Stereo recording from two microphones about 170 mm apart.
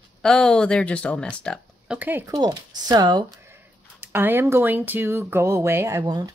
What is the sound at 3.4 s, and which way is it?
Speech, 15° right (ahead or behind).